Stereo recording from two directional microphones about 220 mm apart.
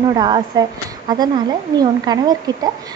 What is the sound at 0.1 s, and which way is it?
A woman's voice, 20° right (ahead or behind).